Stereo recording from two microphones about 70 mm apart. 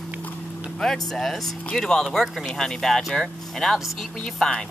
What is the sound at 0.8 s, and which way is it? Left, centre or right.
Speech, centre.